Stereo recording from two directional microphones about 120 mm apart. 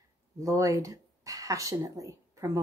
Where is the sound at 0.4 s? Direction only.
25° right (ahead or behind).